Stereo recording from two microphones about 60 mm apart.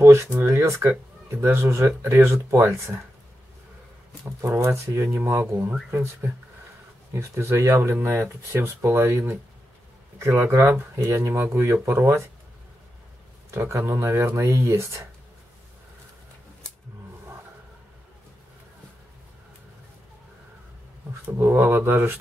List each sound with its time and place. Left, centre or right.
0.0 s speech: right
4.2 s speech: right
5.9 s a sound: right
7.1 s speech: right
8.0 s a sound: right
8.5 s speech: right
10.1 s speech: right
13.5 s speech: right
21.3 s a sound: right